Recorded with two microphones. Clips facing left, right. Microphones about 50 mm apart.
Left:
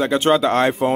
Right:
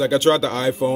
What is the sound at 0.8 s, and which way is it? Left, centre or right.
Speech, left.